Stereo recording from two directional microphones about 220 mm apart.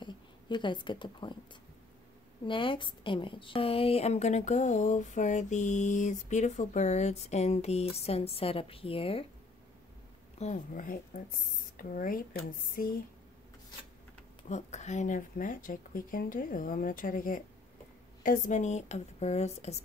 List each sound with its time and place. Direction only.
0.0 s a woman's voice: 20° left (ahead or behind)
2.4 s speech: 20° left (ahead or behind)
10.4 s speech: 35° left (ahead or behind)
14.5 s speech: 30° left (ahead or behind)